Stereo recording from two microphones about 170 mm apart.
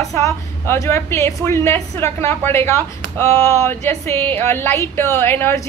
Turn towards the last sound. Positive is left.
turn(degrees=15)  # may be behind; listen again after turning